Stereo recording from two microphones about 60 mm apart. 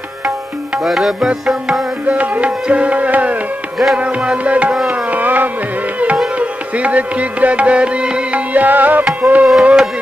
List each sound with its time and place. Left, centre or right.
0.8 s music: centre
2.0 s music: right
3.7 s music: centre
4.0 s music: centre
9.6 s a sound: centre